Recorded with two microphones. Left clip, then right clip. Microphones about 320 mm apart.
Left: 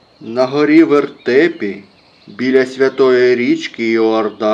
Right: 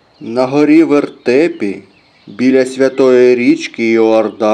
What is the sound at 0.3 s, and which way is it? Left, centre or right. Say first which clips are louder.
Speech: right 2 dB; right.